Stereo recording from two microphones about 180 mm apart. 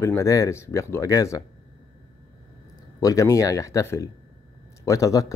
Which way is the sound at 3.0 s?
20° left (ahead or behind).